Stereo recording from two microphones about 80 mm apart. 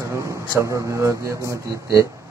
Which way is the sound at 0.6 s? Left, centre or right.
Right.